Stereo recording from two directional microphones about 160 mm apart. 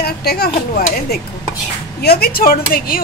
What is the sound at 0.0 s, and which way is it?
Speech, 75° left (ahead or behind).